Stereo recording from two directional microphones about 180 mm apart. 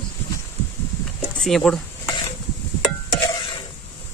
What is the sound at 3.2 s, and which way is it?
Stir, 25° left (ahead or behind).